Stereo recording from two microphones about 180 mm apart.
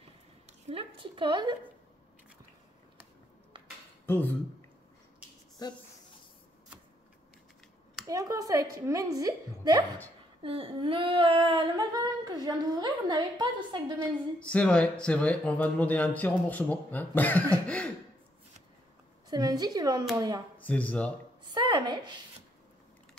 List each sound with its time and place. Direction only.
0.7 s a woman's voice: 30° right (ahead or behind)
3.5 s a sound: 25° right (ahead or behind)
4.0 s speech: 10° left (ahead or behind)
5.6 s speech: 20° left (ahead or behind)
8.1 s female singing: 20° right (ahead or behind)
14.4 s speech: 5° left (ahead or behind)
17.6 s a sound: 5° left (ahead or behind)
19.2 s female singing: 20° right (ahead or behind)
20.5 s speech: 10° left (ahead or behind)
21.5 s female singing: 25° right (ahead or behind)